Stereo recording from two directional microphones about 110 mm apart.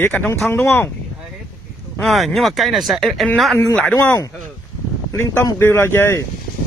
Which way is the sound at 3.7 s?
10° left (ahead or behind).